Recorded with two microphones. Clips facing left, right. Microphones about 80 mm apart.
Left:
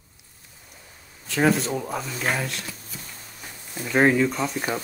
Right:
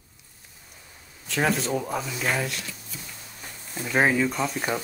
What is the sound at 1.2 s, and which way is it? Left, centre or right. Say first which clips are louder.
Speech: left 3 dB; centre.